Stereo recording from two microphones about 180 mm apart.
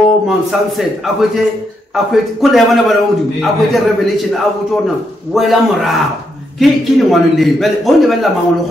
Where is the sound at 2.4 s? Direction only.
Centre (ahead or behind).